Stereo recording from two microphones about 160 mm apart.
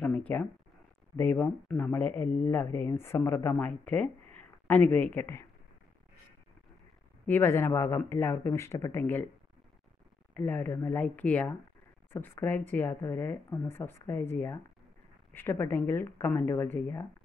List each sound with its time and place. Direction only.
0.0 s a sound: 10° left (ahead or behind)
1.1 s speech: 10° left (ahead or behind)
7.2 s speech: 15° left (ahead or behind)
10.3 s speech: 10° left (ahead or behind)